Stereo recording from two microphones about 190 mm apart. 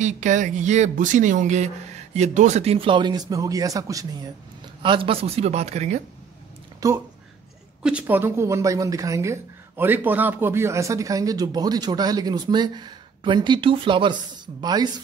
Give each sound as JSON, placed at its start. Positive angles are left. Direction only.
{"t": 0.0, "sound": "a woman's voice", "side_deg": -40}
{"t": 6.8, "sound": "a woman's voice", "side_deg": -20}
{"t": 7.8, "sound": "a woman's voice", "side_deg": -10}